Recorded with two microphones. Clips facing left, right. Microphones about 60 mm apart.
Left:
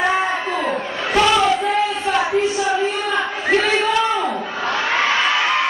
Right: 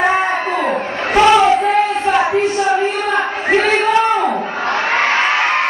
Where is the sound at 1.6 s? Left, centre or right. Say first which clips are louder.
Right 5 dB; right.